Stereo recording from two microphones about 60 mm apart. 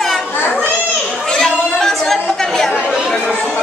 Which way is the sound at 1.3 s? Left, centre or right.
Centre.